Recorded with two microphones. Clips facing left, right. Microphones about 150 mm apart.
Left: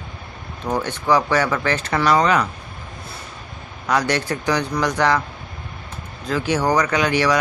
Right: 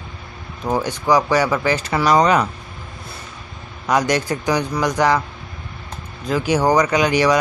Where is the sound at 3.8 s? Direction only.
15° right (ahead or behind).